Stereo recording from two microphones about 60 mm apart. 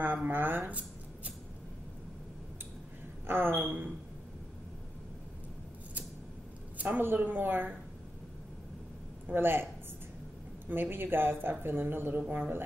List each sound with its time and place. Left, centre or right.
0.0 s speech: right
3.3 s speech: right
7.0 s speech: right
9.3 s speech: right
10.7 s speech: right